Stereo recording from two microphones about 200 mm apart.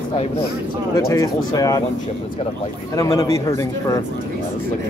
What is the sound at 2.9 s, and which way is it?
A man's voice, 15° left (ahead or behind).